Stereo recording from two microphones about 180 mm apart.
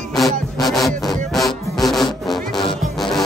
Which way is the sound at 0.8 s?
Centre (ahead or behind).